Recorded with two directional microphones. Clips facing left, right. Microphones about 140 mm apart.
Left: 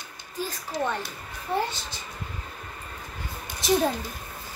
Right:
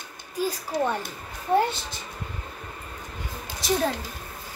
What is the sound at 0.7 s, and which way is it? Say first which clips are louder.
Speech: right 1 dB; 55° right (ahead or behind).